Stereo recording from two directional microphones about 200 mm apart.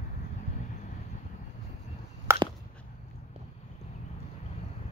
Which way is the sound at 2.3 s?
10° right (ahead or behind).